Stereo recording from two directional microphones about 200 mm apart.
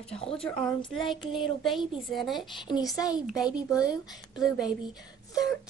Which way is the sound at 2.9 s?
20° left (ahead or behind).